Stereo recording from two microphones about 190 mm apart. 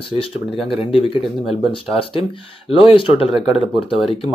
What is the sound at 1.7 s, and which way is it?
Speech, 30° left (ahead or behind).